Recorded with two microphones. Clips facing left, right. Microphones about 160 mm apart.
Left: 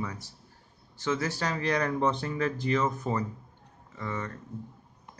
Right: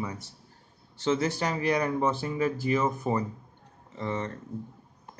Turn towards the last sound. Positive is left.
turn(degrees=-25)  # may be behind; listen again after turning